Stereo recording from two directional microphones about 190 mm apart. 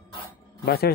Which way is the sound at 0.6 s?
55° left (ahead or behind).